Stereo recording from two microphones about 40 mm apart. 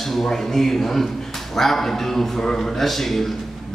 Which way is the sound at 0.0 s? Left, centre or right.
Centre.